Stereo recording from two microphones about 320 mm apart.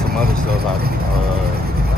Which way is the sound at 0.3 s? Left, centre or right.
Right.